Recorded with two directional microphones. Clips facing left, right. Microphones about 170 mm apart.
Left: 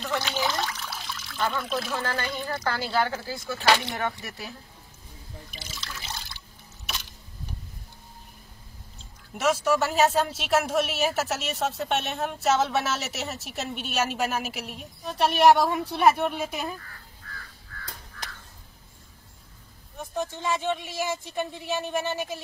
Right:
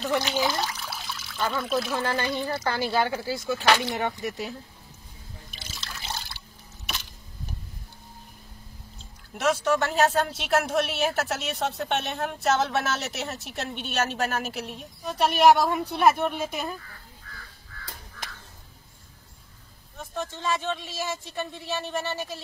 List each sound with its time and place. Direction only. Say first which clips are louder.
0.1 s speech: right 2 dB; 15° right (ahead or behind)
2.0 s speech: right 3 dB; 15° right (ahead or behind)
3.6 s speech: even; 15° left (ahead or behind)
3.9 s speech: right 3 dB; 20° right (ahead or behind)
5.9 s water: right 3 dB; 40° right (ahead or behind)
9.3 s speech: even; 5° left (ahead or behind)
20.0 s speech: left 2 dB; 15° left (ahead or behind)